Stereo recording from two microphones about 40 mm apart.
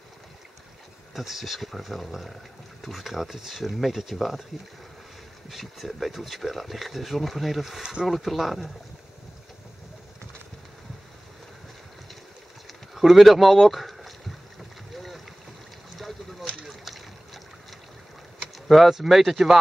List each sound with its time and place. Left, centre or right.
1.1 s speech: centre
5.5 s speech: centre
7.8 s speech: centre
8.1 s speech: centre
12.9 s speech: centre
15.0 s vehicle: centre
16.0 s a sound: centre
16.6 s boat: centre
18.7 s speech: centre